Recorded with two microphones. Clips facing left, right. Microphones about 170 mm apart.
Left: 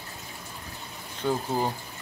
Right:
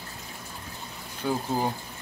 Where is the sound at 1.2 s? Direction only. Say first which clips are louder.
Left 1 dB; 10° right (ahead or behind).